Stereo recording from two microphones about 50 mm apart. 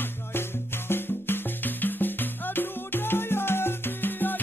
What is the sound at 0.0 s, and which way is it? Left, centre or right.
Music, left.